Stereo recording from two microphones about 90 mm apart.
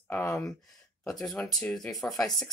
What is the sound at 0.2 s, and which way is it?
Speech, 35° left (ahead or behind).